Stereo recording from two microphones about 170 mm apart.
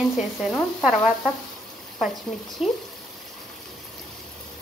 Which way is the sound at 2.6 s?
5° right (ahead or behind).